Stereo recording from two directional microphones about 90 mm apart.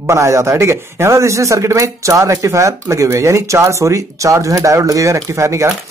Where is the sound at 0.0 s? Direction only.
35° right (ahead or behind).